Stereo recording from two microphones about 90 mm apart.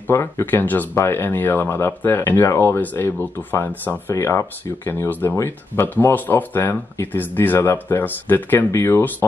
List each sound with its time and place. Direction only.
0.1 s speech: 30° left (ahead or behind)
4.1 s speech: 30° left (ahead or behind)